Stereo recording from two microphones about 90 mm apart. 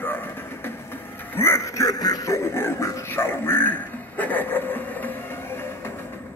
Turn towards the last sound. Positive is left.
turn(degrees=25)  # may be behind; listen again after turning